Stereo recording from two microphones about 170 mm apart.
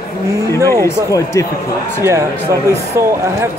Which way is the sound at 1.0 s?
20° left (ahead or behind).